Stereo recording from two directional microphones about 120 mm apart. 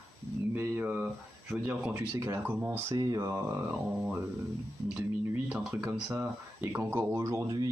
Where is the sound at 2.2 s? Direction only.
20° right (ahead or behind).